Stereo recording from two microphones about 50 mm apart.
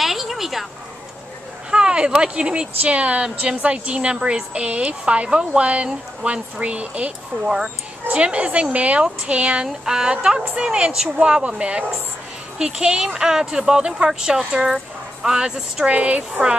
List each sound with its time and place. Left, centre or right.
0.0 s a sound: centre
1.7 s a woman's voice: centre
7.4 s speech: centre
8.1 s a woman's voice: right
9.8 s a woman's voice: centre